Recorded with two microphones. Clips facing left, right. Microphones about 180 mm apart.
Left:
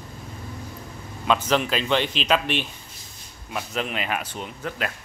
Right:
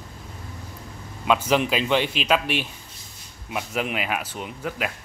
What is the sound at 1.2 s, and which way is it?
Speech, 10° right (ahead or behind).